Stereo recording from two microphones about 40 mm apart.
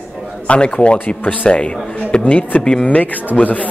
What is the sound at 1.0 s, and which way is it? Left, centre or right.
Speech, left.